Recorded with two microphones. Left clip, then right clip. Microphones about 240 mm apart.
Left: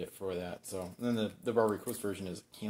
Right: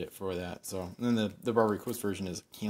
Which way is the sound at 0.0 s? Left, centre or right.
Right.